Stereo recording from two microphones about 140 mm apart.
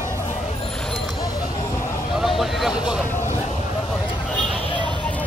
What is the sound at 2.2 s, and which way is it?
Vehicle, centre (ahead or behind).